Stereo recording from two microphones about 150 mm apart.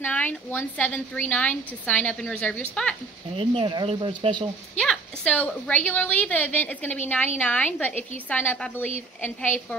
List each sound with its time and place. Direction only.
0.0 s a woman's voice: 10° left (ahead or behind)
3.3 s speech: 35° right (ahead or behind)
4.7 s a woman's voice: 5° left (ahead or behind)